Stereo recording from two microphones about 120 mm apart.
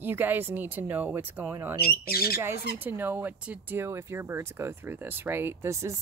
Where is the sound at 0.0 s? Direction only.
15° right (ahead or behind).